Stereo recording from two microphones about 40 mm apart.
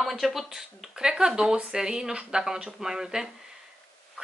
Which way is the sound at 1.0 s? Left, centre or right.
Centre.